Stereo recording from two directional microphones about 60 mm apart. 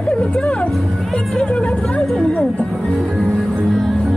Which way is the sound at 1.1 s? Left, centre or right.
Centre.